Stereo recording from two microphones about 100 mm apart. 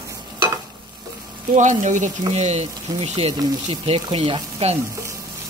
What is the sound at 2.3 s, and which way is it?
Speech, 90° right.